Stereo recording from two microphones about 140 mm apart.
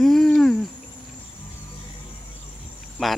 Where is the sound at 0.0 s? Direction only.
Centre (ahead or behind).